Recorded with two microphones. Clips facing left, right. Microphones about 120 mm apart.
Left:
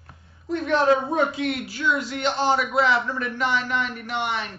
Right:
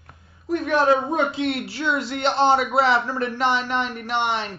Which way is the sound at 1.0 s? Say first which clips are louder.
Right 1 dB; 25° right (ahead or behind).